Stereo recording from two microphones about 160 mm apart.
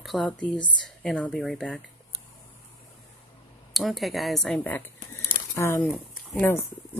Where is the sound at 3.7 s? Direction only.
Centre (ahead or behind).